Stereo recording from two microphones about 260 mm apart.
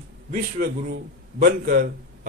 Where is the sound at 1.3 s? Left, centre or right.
Right.